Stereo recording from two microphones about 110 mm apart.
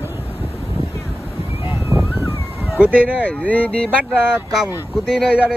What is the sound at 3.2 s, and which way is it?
Speech, 10° left (ahead or behind).